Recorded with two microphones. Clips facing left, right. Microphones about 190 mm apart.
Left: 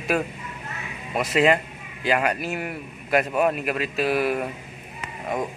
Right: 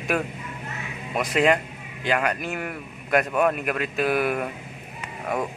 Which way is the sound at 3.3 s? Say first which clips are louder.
Even; 30° left (ahead or behind).